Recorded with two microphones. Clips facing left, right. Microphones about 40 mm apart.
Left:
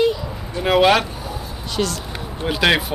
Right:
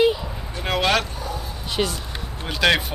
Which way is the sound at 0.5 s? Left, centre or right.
Centre.